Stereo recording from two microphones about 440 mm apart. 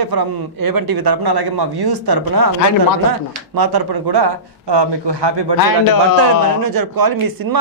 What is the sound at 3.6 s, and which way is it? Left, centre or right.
A man's voice, right.